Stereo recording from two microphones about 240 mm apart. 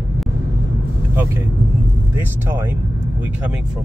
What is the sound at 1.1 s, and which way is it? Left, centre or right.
Speech, centre.